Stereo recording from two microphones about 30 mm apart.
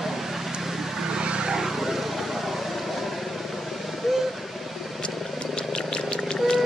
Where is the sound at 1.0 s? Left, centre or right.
Right.